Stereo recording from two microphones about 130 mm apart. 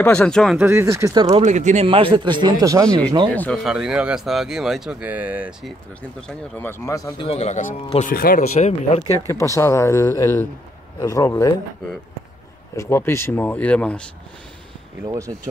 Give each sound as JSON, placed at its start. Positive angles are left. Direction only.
{"t": 0.1, "sound": "speech", "side_deg": 5}
{"t": 0.6, "sound": "speech", "side_deg": -15}
{"t": 1.1, "sound": "speech", "side_deg": -35}
{"t": 1.4, "sound": "speech", "side_deg": -65}
{"t": 1.9, "sound": "speech", "side_deg": -45}
{"t": 3.3, "sound": "speech", "side_deg": 10}
{"t": 3.6, "sound": "speech", "side_deg": -5}
{"t": 6.6, "sound": "speech", "side_deg": 20}
{"t": 7.2, "sound": "speech", "side_deg": 55}
{"t": 9.0, "sound": "speech", "side_deg": 25}
{"t": 12.7, "sound": "speech", "side_deg": 20}
{"t": 15.0, "sound": "speech", "side_deg": -25}